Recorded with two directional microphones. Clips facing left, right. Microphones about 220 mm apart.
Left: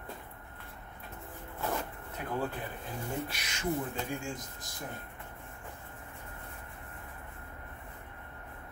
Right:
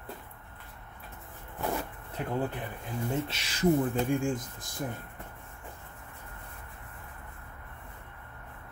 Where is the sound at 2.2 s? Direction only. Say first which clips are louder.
Right 3 dB; 30° right (ahead or behind).